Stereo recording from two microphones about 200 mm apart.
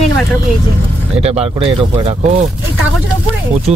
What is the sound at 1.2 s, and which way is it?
Speech, 30° right (ahead or behind).